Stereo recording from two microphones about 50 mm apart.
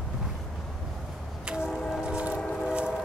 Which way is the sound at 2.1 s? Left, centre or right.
Right.